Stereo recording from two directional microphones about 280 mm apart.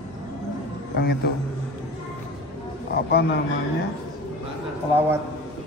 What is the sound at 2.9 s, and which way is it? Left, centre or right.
Speech, left.